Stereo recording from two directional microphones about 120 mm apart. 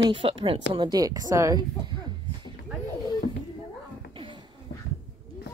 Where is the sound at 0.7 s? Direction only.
35° right (ahead or behind).